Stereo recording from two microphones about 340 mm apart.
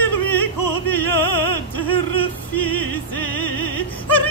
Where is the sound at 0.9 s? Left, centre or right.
Left.